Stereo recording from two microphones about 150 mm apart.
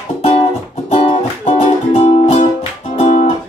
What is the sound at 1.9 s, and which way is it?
Music, 45° left (ahead or behind).